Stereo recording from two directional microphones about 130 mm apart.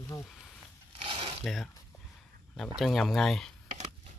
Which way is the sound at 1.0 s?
45° right (ahead or behind).